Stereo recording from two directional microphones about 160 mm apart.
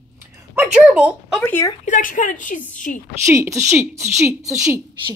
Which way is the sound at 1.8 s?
55° left (ahead or behind).